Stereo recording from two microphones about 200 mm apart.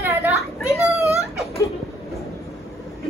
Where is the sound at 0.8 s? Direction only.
15° left (ahead or behind).